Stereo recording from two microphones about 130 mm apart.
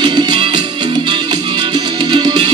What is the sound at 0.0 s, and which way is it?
Music, 35° right (ahead or behind).